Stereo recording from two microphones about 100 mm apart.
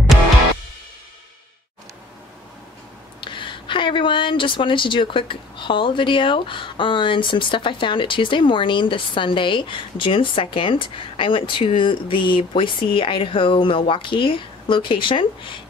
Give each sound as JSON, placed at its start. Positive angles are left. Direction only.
{"t": 3.2, "sound": "speech", "side_deg": 55}